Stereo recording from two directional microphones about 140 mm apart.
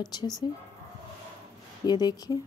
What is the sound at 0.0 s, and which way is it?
Speech, 30° left (ahead or behind).